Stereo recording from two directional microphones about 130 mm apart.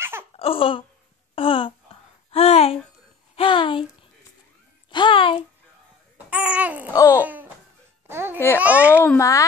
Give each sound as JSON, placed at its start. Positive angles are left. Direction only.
{"t": 0.4, "sound": "speech", "side_deg": 45}
{"t": 1.3, "sound": "a sound", "side_deg": 45}
{"t": 2.3, "sound": "speech", "side_deg": 50}
{"t": 4.9, "sound": "speech", "side_deg": 40}
{"t": 6.1, "sound": "babbling", "side_deg": -10}
{"t": 6.9, "sound": "a child's voice", "side_deg": 25}
{"t": 7.2, "sound": "babbling", "side_deg": -15}
{"t": 8.5, "sound": "a child's voice", "side_deg": -10}
{"t": 8.9, "sound": "a child's voice", "side_deg": 15}